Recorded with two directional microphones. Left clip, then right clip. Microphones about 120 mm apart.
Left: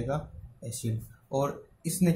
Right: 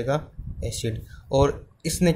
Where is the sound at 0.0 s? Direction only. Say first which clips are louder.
Right 8 dB; 55° right (ahead or behind).